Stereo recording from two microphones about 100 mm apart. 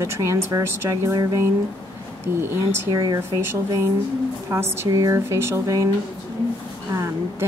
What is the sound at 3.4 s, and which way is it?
A woman's voice, 25° right (ahead or behind).